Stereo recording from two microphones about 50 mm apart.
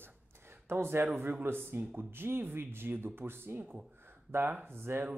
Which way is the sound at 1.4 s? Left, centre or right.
Right.